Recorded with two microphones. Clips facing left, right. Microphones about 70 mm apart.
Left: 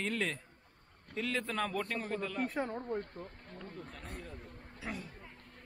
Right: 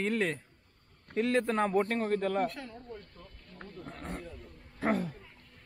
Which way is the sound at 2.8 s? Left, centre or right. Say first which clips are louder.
Left 8 dB; left.